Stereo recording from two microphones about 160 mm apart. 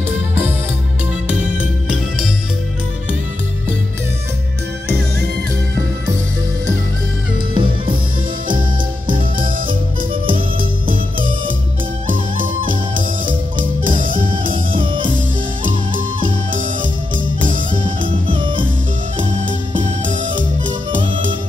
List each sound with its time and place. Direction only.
1.2 s music: 5° right (ahead or behind)
7.5 s music: 30° right (ahead or behind)
8.5 s music: 60° right (ahead or behind)
10.6 s music: 60° right (ahead or behind)
14.8 s music: 30° right (ahead or behind)
16.5 s music: 55° right (ahead or behind)
17.6 s music: 30° right (ahead or behind)
19.8 s music: 55° right (ahead or behind)